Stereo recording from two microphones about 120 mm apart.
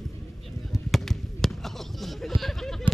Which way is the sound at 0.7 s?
Centre (ahead or behind).